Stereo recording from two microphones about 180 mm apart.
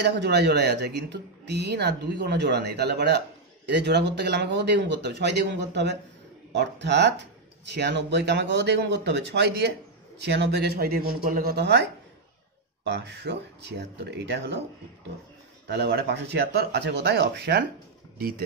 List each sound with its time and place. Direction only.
0.0 s speech: 70° right (ahead or behind)
15.7 s speech: 65° right (ahead or behind)